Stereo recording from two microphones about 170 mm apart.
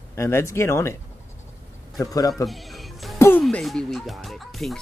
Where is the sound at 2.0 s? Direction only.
20° left (ahead or behind).